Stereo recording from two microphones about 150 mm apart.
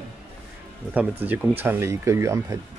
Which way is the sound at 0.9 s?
10° right (ahead or behind).